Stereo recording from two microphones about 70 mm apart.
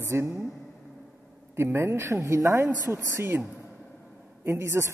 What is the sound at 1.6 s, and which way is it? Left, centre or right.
A woman's voice, right.